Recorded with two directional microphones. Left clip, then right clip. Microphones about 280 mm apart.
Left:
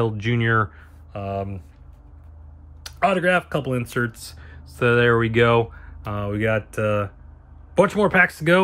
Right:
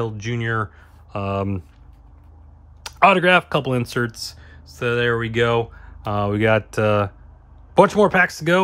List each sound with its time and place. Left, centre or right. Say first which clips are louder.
0.0 s speech: left 3 dB; centre
1.1 s speech: right 4 dB; centre
2.8 s speech: right 6 dB; centre